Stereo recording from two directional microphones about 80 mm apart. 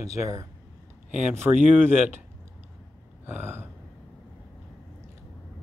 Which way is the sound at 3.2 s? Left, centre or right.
Right.